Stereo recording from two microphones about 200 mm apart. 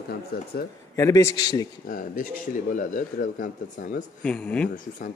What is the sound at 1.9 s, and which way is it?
Speech, 45° left (ahead or behind).